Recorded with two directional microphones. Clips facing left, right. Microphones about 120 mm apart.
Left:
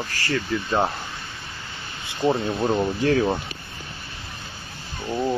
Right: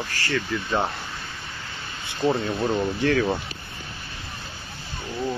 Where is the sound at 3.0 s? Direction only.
30° left (ahead or behind).